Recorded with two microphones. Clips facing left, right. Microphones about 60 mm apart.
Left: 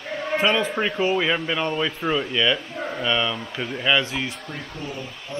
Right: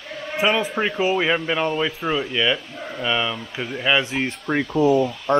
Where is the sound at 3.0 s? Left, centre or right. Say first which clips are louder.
Right 1 dB; centre.